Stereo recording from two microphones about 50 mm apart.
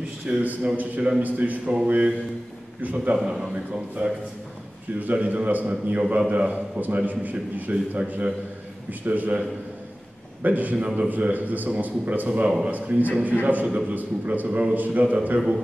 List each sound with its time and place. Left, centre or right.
0.3 s a man's voice: right
1.9 s a man's voice: right
3.3 s a man's voice: centre
4.0 s a man's voice: right
9.0 s a man's voice: right
10.4 s a man's voice: right
12.4 s a man's voice: centre
13.2 s a man's voice: right